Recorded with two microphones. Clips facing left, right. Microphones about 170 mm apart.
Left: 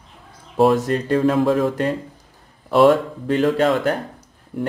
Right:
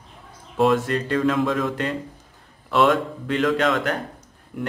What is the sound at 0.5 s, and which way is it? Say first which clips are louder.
Speech: left 3 dB; 40° left (ahead or behind).